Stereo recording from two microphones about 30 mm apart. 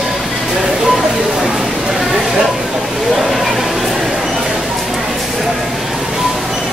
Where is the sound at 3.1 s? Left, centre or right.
Centre.